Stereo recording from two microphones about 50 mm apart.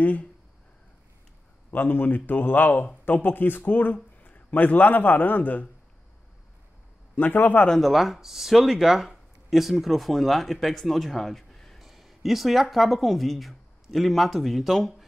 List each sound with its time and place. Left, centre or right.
0.0 s speech: left
1.7 s speech: left
7.2 s speech: left
7.8 s speech: centre